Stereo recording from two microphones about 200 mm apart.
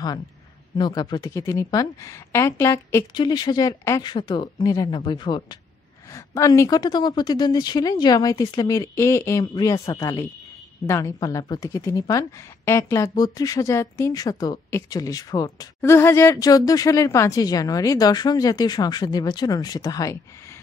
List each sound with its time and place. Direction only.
0.7 s a woman's voice: 20° left (ahead or behind)